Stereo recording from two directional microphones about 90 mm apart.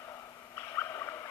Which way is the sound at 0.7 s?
30° left (ahead or behind).